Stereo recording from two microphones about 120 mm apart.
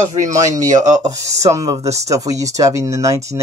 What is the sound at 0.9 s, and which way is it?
Speech, 30° right (ahead or behind).